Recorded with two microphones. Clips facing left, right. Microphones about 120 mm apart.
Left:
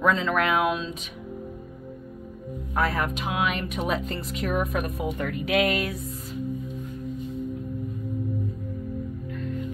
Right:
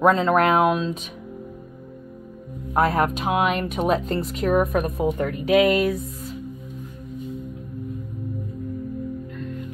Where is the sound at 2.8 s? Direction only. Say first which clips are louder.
Right 6 dB; 45° right (ahead or behind).